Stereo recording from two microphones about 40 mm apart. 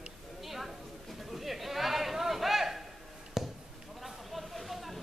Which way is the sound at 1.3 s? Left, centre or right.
Centre.